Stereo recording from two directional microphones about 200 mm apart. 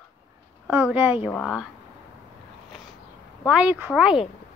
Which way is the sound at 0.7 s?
5° right (ahead or behind).